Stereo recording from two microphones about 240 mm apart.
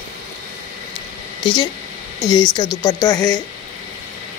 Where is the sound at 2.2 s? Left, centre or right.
Centre.